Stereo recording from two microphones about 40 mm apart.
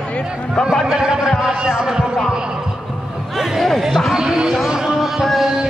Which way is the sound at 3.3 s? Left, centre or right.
Centre.